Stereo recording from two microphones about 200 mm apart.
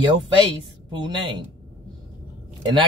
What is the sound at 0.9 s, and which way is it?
Speech, 20° right (ahead or behind).